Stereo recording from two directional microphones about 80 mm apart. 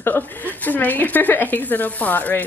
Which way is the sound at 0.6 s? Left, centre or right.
Left.